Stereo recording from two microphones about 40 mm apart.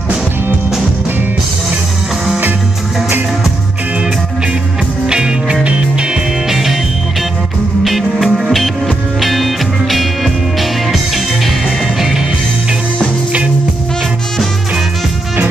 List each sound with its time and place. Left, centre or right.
5.0 s music: centre
6.5 s music: centre
7.8 s music: centre